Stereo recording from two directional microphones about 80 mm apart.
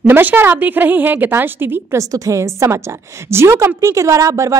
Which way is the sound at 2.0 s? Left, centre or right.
Right.